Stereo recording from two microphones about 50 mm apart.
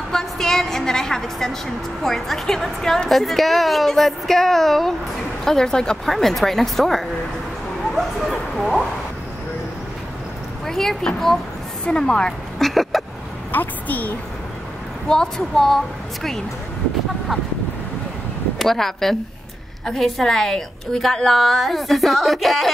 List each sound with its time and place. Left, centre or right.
0.1 s a woman's voice: centre
7.9 s speech: centre
10.6 s speech: centre
11.8 s a woman's voice: centre
13.5 s a woman's voice: left
15.0 s a woman's voice: centre
18.6 s a woman's voice: centre